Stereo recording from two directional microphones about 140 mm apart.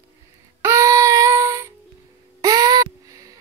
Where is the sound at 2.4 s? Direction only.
25° right (ahead or behind).